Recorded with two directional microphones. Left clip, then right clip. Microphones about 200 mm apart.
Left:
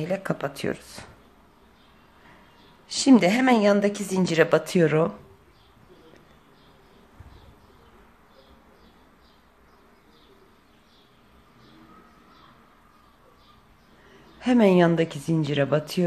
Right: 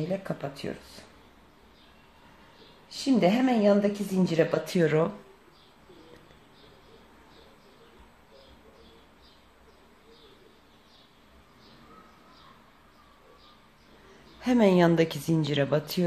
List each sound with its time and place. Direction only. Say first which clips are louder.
0.0 s a woman's voice: left 5 dB; 20° left (ahead or behind)
2.9 s a woman's voice: left 5 dB; 20° left (ahead or behind)
14.4 s speech: left 3 dB; 10° left (ahead or behind)